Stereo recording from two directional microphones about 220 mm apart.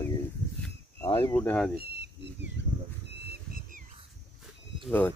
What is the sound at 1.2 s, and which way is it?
Speech, 5° left (ahead or behind).